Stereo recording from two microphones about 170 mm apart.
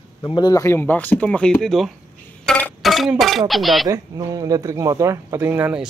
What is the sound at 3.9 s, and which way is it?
Speech, 20° right (ahead or behind).